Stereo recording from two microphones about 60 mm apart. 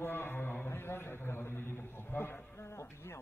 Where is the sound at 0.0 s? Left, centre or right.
Left.